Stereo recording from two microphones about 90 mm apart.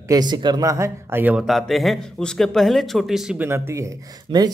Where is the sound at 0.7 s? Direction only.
35° right (ahead or behind).